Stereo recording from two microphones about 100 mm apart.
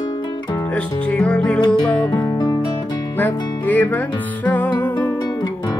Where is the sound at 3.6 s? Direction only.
15° left (ahead or behind).